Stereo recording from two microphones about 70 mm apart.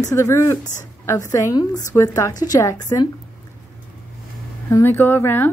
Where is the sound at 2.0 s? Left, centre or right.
Left.